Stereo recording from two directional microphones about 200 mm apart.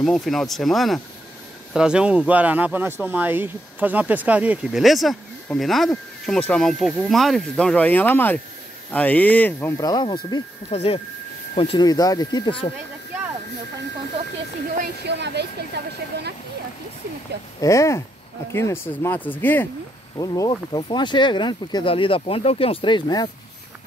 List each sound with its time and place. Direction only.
0.0 s speech: centre (ahead or behind); by 10.4 s 20° left (ahead or behind)
10.7 s speech: 30° left (ahead or behind)
15.0 s speech: 60° right (ahead or behind)
17.6 s speech: 15° left (ahead or behind)
20.2 s speech: 20° left (ahead or behind)